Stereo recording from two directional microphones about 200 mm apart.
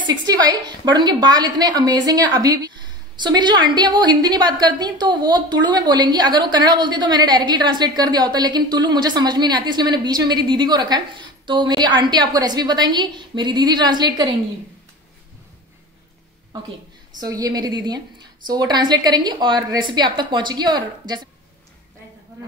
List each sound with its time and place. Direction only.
0.0 s a woman's voice: 20° right (ahead or behind)
17.2 s a woman's voice: 20° right (ahead or behind)